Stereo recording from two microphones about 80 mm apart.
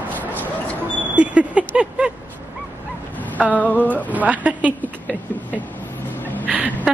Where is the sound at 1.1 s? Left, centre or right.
Centre.